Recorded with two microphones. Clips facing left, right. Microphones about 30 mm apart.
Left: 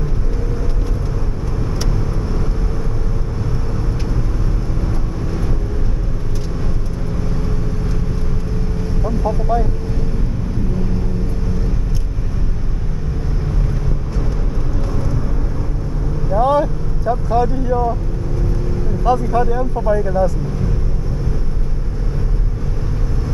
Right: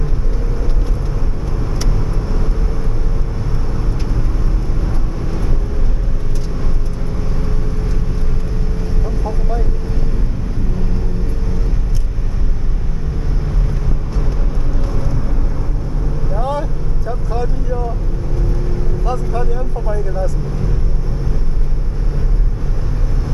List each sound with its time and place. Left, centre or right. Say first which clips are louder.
9.0 s vehicle: left 7 dB; centre
16.3 s vehicle: left 7 dB; centre
19.0 s vehicle: left 7 dB; centre